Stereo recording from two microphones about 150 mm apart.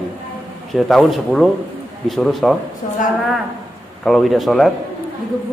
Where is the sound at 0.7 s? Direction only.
Centre (ahead or behind).